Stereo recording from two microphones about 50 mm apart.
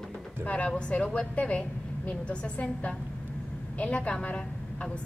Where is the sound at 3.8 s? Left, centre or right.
Left.